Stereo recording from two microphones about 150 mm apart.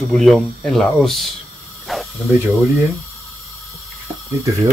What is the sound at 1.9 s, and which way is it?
Snake, centre (ahead or behind).